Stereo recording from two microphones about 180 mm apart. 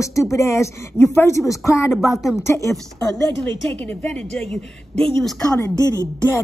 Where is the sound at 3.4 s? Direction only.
5° left (ahead or behind).